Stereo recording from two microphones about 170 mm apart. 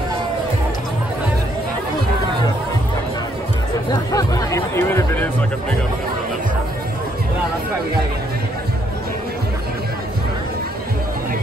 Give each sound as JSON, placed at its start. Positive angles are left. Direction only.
{"t": 3.9, "sound": "music", "side_deg": 20}